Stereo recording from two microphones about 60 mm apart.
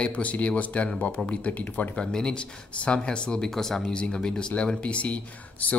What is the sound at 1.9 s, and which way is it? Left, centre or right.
Speech, centre.